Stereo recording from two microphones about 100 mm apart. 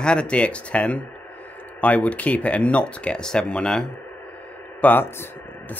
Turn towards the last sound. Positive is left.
turn(degrees=15)  # may be behind; listen again after turning